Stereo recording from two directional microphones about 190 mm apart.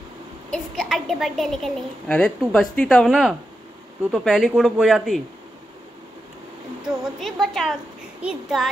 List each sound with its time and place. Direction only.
0.5 s a woman's voice: centre (ahead or behind)
6.8 s speech: centre (ahead or behind)